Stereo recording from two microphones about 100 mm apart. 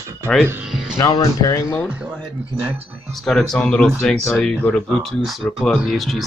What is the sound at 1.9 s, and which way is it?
Speech, 10° right (ahead or behind).